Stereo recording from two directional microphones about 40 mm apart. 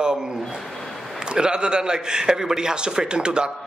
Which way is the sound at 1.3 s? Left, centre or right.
Right.